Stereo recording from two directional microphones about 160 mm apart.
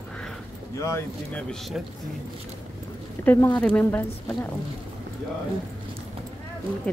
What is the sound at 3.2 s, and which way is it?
Speech, 15° left (ahead or behind).